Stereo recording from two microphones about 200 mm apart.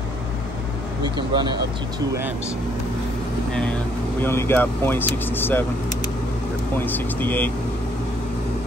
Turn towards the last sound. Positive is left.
turn(degrees=10)  # may be behind; listen again after turning